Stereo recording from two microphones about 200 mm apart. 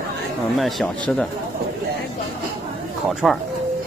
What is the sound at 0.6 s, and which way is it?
Speech, centre (ahead or behind).